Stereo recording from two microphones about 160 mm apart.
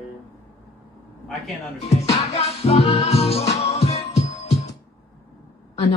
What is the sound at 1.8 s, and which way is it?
Music, 40° left (ahead or behind).